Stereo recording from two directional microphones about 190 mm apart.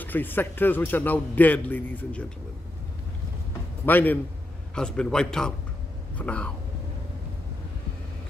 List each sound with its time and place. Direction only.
0.0 s a man's voice: 10° left (ahead or behind)
3.8 s a man's voice: 10° left (ahead or behind)